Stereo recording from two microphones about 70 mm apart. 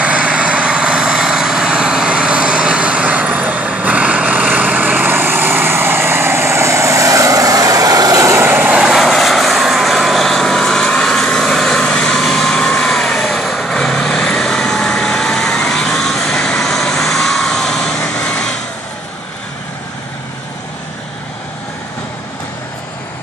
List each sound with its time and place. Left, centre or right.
0.0 s vehicle: centre; by 8.4 s right
8.4 s vehicle: right
8.7 s vehicle: centre
9.0 s vehicle: centre